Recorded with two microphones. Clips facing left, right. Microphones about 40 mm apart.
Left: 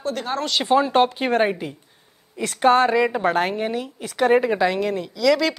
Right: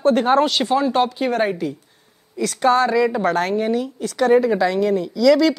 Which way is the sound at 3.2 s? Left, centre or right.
Centre.